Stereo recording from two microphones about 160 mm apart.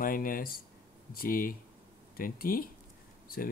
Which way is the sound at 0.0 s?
60° left (ahead or behind).